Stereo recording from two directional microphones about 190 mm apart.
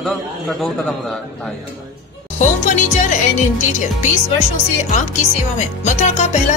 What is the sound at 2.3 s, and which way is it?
Speech, 40° left (ahead or behind).